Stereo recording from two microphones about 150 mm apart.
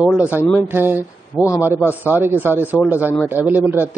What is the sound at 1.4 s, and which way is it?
Speech, 20° left (ahead or behind).